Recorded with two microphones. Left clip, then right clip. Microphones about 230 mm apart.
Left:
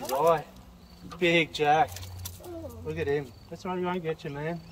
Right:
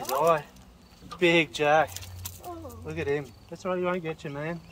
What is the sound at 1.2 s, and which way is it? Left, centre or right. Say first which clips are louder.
Speech: right 2 dB; centre.